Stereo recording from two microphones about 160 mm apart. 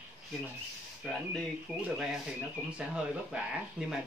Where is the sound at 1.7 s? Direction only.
Centre (ahead or behind).